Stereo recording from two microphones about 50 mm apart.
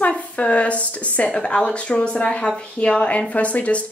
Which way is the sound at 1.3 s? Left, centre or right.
Centre.